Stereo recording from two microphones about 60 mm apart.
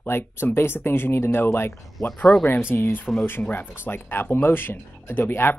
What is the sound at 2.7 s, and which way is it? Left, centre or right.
Speech, left.